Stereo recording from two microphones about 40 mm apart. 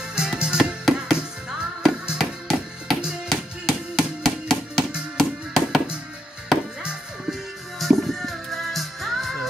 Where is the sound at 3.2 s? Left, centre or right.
Centre.